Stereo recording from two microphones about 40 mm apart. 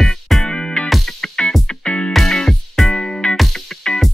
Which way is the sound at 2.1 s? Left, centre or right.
Centre.